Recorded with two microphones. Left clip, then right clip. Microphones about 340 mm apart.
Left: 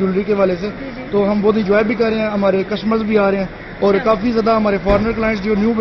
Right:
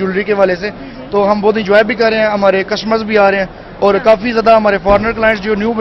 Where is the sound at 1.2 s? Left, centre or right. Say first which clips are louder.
Right 5 dB; right.